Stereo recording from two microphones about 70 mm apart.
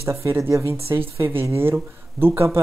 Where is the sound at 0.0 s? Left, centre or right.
Right.